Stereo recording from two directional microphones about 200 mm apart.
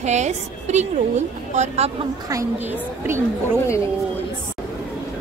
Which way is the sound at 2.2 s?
15° right (ahead or behind).